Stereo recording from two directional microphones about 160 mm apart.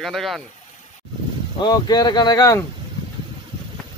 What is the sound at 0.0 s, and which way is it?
Speech, centre (ahead or behind).